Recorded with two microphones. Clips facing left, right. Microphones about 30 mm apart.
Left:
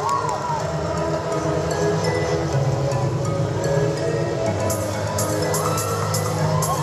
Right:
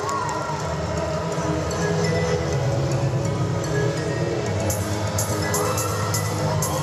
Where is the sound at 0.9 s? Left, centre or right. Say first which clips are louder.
Left 3 dB; centre.